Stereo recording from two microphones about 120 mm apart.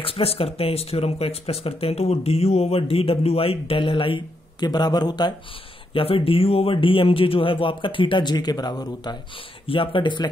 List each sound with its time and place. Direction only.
0.0 s speech: 50° left (ahead or behind); by 5.3 s 35° left (ahead or behind)
5.9 s speech: 50° left (ahead or behind)